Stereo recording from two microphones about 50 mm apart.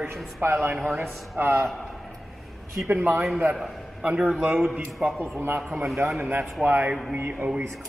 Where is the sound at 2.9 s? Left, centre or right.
Right.